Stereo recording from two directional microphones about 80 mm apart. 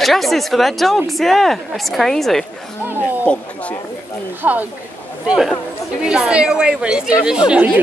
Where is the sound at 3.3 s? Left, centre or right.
Centre.